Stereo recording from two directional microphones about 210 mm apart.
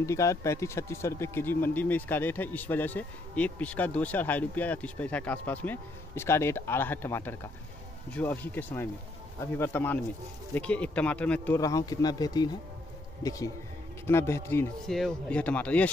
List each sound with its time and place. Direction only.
0.0 s speech: 15° left (ahead or behind)